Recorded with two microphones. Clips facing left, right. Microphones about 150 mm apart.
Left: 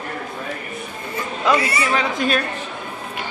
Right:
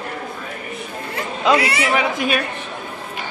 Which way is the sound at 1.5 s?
80° right.